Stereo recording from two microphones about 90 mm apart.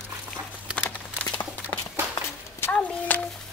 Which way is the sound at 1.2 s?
20° left (ahead or behind).